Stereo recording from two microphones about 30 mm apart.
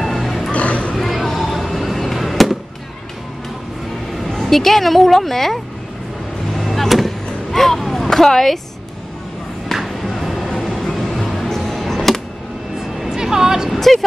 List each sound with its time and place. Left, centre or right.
0.0 s music: centre
0.5 s a sound: left
0.9 s a sound: centre
2.1 s fireworks: centre
4.3 s speech: centre
6.5 s vehicle: centre
7.8 s a sound: centre
8.1 s speech: centre
9.8 s a sound: centre
10.6 s vehicle: centre
11.4 s music: centre
13.1 s vehicle: centre